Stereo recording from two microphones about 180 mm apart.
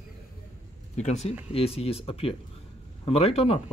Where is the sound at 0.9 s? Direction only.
40° left (ahead or behind).